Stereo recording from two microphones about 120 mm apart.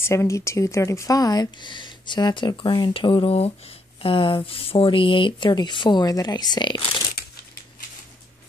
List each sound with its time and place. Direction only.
0.0 s speech: 25° left (ahead or behind); by 7.0 s 40° left (ahead or behind)